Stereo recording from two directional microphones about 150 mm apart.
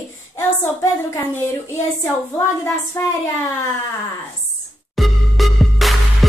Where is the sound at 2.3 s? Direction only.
20° left (ahead or behind).